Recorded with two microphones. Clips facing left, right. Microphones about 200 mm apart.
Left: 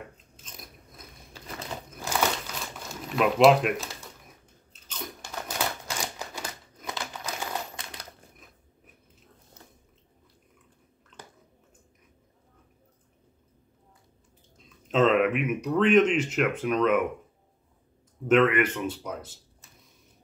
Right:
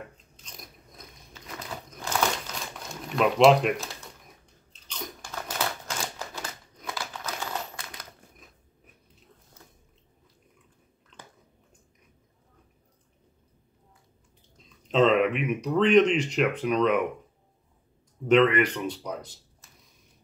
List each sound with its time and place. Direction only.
0.4 s biting: 5° left (ahead or behind)
1.3 s a sound: 30° left (ahead or behind)
1.9 s crumpling: 5° left (ahead or behind)
4.8 s biting: 5° left (ahead or behind)
5.2 s typewriter: 10° left (ahead or behind)
14.9 s speech: centre (ahead or behind)
18.3 s speech: 5° left (ahead or behind)